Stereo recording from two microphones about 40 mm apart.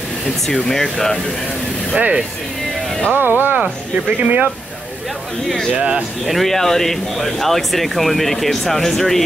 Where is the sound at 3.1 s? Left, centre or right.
Right.